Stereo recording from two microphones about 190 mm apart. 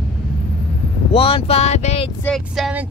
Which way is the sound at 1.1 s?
30° left (ahead or behind).